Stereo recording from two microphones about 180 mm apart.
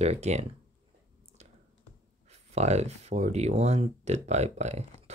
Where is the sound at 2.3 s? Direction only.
40° right (ahead or behind).